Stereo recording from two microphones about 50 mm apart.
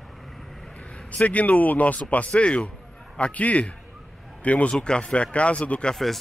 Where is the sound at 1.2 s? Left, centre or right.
Left.